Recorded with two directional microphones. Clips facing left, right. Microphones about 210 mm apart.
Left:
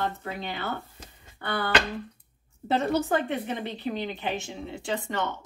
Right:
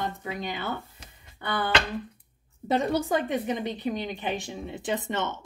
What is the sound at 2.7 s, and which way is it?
A woman's voice, 15° right (ahead or behind).